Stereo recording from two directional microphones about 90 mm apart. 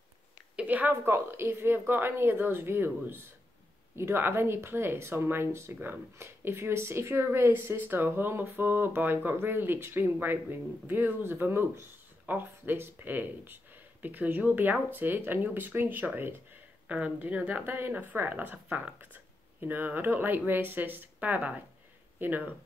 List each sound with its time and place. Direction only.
0.6 s speech: 20° right (ahead or behind)